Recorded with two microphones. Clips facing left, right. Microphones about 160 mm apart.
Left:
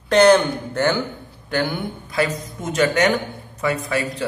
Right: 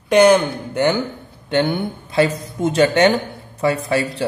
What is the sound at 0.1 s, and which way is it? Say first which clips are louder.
A man's voice: right 1 dB; 10° right (ahead or behind).